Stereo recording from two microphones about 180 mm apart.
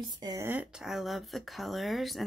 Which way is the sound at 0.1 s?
20° right (ahead or behind).